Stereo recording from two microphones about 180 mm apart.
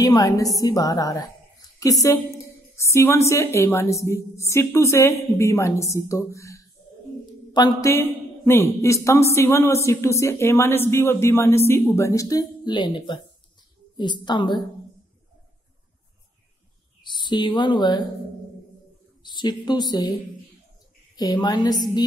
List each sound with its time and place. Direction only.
0.0 s a woman's voice: 20° left (ahead or behind)
17.0 s speech: 25° left (ahead or behind)
19.2 s a woman's voice: 25° left (ahead or behind)
21.2 s a woman's voice: 20° left (ahead or behind)